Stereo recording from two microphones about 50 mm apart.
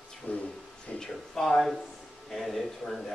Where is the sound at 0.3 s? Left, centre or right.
Left.